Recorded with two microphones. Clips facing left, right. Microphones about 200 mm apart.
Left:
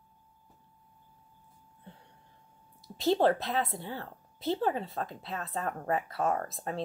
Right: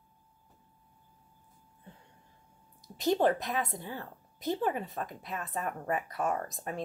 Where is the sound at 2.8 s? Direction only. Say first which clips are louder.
Left 1 dB; 15° right (ahead or behind).